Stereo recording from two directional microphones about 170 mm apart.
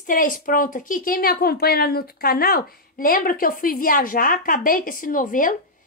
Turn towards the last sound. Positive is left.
turn(degrees=50)  # may be behind; listen again after turning